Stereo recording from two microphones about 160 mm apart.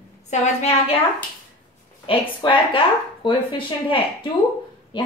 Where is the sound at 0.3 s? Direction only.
45° left (ahead or behind).